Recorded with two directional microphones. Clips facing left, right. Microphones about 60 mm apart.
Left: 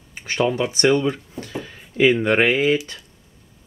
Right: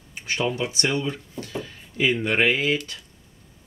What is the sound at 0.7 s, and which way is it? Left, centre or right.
Speech, left.